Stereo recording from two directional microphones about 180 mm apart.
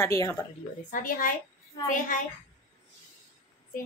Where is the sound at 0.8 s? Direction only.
50° left (ahead or behind).